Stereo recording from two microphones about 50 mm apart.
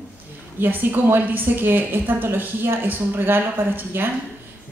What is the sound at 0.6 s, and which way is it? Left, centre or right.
A woman's voice, right.